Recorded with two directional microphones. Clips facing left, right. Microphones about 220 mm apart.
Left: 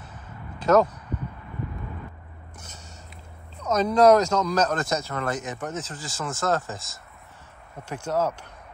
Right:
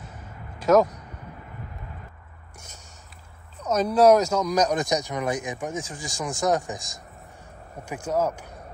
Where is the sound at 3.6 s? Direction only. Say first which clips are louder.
Even; 10° right (ahead or behind).